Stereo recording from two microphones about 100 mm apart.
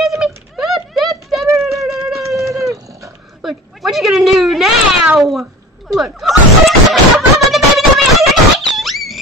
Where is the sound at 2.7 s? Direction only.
35° right (ahead or behind).